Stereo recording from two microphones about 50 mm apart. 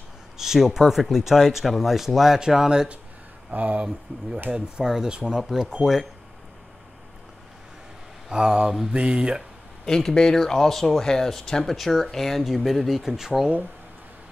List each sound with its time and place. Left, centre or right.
0.4 s speech: centre
3.5 s speech: right
4.5 s speech: centre
8.3 s speech: centre
9.8 s speech: centre